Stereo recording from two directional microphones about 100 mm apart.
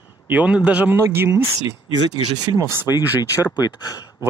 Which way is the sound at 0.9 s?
25° right (ahead or behind).